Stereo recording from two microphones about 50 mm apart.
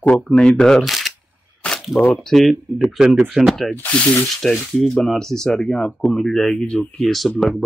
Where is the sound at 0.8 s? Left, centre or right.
Centre.